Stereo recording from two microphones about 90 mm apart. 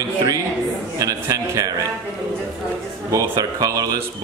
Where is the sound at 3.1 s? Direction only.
40° right (ahead or behind).